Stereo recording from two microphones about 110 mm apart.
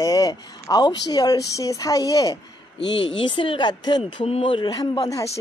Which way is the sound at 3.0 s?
50° left (ahead or behind).